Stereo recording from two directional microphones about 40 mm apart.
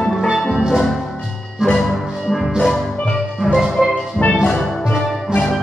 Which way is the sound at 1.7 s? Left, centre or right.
Centre.